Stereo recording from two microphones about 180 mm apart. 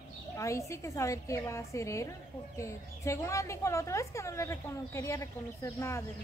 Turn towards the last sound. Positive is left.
turn(degrees=15)  # may be behind; listen again after turning